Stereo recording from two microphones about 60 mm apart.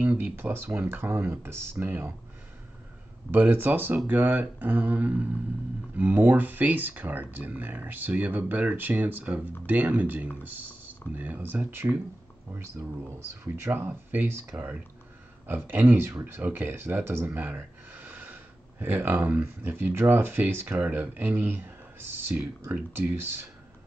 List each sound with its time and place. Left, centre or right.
0.0 s speech: right
0.4 s speech: right
3.3 s speech: right
11.7 s speech: right
13.2 s speech: right
13.7 s speech: right
15.4 s speech: right